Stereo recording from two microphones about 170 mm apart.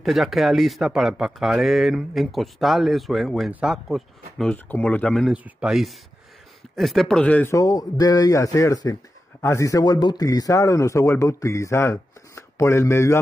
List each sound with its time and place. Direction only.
0.0 s speech: centre (ahead or behind)
7.5 s speech: 20° left (ahead or behind)